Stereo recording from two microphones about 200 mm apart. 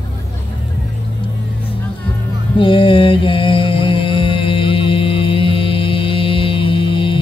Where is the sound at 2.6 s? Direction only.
25° left (ahead or behind).